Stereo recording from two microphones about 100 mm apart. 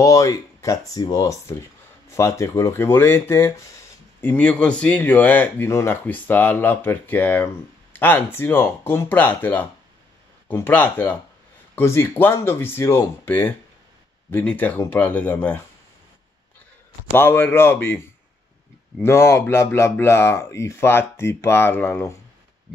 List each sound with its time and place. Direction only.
0.0 s speech: 35° left (ahead or behind); by 15.6 s 15° left (ahead or behind)
17.1 s speech: 25° left (ahead or behind)
19.0 s speech: 25° left (ahead or behind)